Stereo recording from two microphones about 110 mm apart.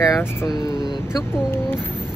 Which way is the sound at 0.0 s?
25° left (ahead or behind).